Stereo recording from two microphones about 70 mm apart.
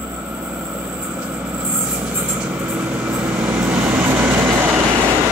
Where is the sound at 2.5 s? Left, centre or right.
Right.